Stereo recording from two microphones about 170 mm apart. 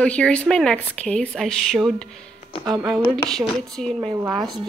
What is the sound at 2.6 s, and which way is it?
Speech, 25° right (ahead or behind).